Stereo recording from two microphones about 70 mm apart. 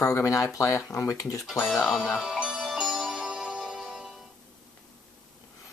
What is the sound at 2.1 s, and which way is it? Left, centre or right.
Speech, centre.